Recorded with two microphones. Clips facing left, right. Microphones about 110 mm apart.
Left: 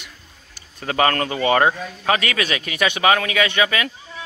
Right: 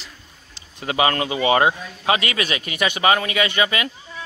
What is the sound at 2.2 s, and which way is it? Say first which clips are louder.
Speech: left 1 dB; 50° left (ahead or behind).